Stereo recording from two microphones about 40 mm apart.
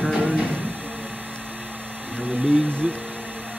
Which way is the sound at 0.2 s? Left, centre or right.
Right.